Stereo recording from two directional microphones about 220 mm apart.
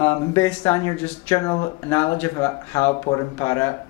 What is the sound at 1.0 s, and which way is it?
Speech, 30° left (ahead or behind).